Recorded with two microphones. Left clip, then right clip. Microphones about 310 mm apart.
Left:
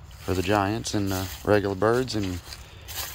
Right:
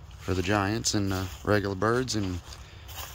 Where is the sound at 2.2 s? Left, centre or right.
Left.